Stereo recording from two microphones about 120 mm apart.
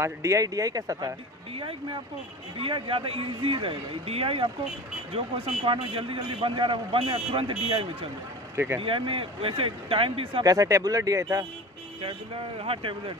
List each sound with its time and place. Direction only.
0.0 s speech: 25° right (ahead or behind)
1.6 s a man's voice: 45° right (ahead or behind)
10.4 s speech: 30° right (ahead or behind)
12.0 s a man's voice: 50° right (ahead or behind)